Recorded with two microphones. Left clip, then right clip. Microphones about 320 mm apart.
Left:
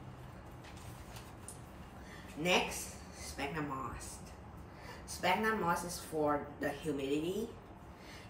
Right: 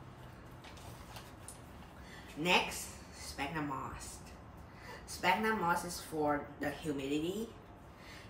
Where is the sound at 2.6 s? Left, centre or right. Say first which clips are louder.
Even; right.